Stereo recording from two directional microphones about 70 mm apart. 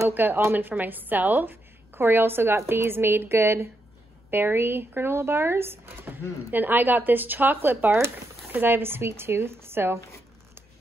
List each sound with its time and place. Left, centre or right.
0.1 s a woman's voice: right